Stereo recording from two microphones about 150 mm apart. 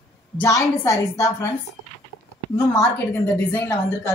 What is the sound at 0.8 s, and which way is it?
Speech, 20° left (ahead or behind).